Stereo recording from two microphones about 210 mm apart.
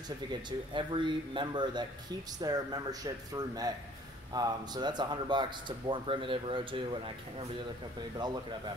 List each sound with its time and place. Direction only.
0.3 s speech: 20° right (ahead or behind)